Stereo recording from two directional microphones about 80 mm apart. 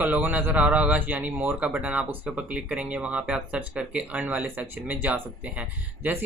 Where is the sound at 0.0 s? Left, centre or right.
Right.